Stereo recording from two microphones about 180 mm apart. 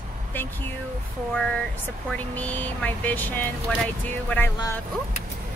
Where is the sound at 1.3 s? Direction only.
5° left (ahead or behind).